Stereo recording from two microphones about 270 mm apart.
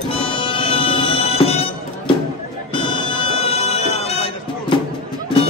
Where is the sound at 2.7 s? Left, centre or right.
Centre.